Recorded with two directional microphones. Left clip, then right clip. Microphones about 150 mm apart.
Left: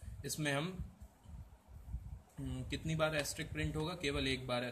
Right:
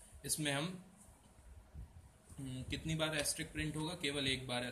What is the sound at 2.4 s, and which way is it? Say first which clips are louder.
A man's voice: left 1 dB; 55° left (ahead or behind).